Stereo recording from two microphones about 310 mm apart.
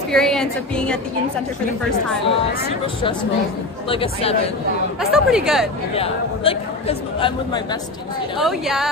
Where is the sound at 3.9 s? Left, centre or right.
Centre.